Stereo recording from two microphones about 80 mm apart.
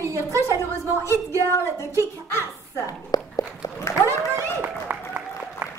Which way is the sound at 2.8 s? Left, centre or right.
Left.